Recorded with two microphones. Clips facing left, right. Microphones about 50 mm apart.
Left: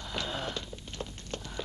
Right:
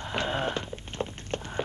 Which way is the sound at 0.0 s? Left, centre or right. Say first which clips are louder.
Right 6 dB; right.